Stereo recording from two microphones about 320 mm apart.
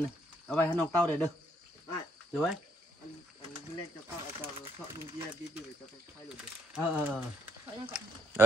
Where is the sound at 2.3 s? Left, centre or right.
Centre.